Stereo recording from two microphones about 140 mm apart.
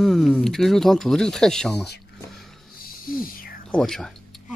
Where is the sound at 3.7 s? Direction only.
Centre (ahead or behind).